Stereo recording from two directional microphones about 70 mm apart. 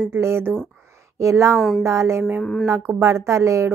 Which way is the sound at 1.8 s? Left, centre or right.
Right.